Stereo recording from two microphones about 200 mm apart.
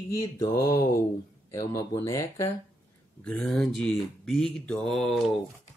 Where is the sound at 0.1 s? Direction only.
15° left (ahead or behind).